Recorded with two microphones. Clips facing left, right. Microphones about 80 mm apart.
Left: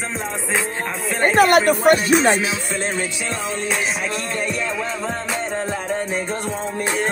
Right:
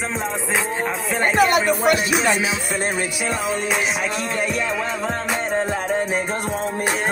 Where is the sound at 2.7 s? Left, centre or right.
Centre.